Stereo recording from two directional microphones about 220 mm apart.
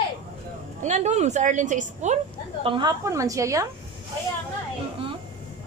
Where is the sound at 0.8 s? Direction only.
30° right (ahead or behind).